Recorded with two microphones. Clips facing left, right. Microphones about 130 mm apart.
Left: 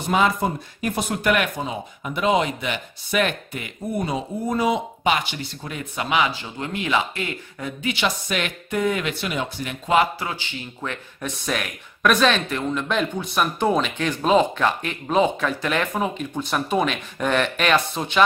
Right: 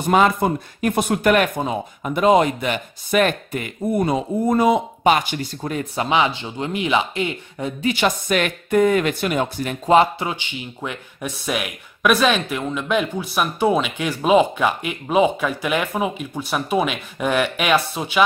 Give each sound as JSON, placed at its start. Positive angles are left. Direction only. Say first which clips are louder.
{"t": 0.1, "sound": "speech", "louder": "right 4 dB", "side_deg": -55}
{"t": 6.0, "sound": "speech", "louder": "right 2 dB", "side_deg": -25}
{"t": 7.8, "sound": "speech", "louder": "right 4 dB", "side_deg": -45}
{"t": 9.9, "sound": "speech", "louder": "right 4 dB", "side_deg": -20}